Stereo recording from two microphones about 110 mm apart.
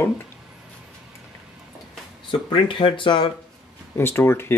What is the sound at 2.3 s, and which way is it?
Speech, 50° left (ahead or behind).